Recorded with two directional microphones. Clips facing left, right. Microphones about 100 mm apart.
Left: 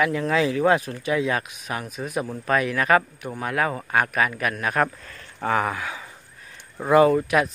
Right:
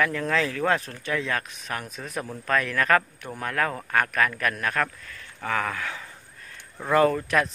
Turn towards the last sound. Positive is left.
turn(degrees=10)  # may be behind; listen again after turning